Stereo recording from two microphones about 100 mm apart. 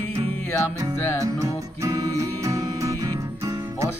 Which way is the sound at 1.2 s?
35° right (ahead or behind).